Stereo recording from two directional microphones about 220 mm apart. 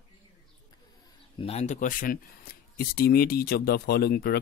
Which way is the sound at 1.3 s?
30° left (ahead or behind).